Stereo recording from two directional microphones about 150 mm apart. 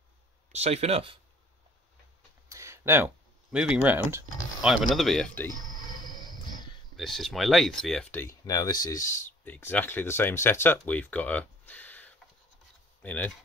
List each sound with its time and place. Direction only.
0.5 s speech: 45° right (ahead or behind)
2.5 s a sound: 20° right (ahead or behind)
3.5 s speech: 5° right (ahead or behind); by 5.5 s 10° left (ahead or behind)
5.9 s music: 30° left (ahead or behind)
7.0 s speech: centre (ahead or behind)
8.5 s speech: 25° left (ahead or behind)